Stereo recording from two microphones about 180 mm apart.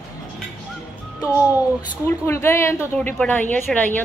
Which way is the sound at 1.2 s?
10° right (ahead or behind).